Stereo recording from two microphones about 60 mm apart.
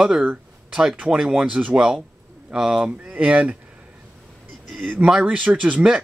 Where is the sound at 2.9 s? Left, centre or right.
Right.